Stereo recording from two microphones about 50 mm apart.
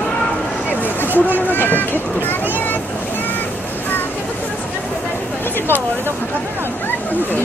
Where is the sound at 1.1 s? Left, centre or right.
Left.